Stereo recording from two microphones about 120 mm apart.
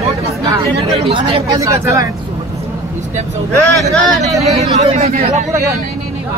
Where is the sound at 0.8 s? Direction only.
55° right (ahead or behind).